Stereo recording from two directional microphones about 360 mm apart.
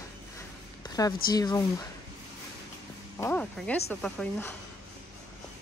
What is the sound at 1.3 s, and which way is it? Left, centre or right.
Speech, centre.